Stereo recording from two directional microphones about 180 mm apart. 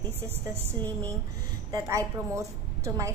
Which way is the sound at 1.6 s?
15° right (ahead or behind).